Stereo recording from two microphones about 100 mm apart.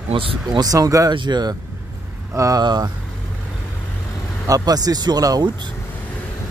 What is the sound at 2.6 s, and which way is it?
Speech, 45° right (ahead or behind).